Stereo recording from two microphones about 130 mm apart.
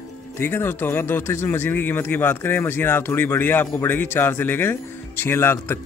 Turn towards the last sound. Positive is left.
turn(degrees=20)  # may be behind; listen again after turning